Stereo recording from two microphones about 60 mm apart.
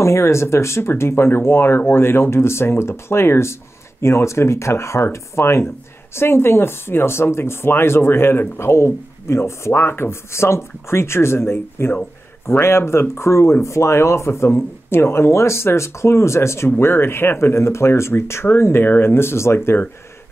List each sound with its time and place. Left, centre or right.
0.0 s speech: left